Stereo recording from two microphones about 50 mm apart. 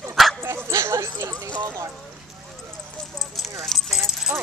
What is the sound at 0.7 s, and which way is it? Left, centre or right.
Speech, right.